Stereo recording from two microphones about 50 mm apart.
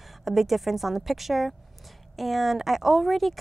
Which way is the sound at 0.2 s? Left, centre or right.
Centre.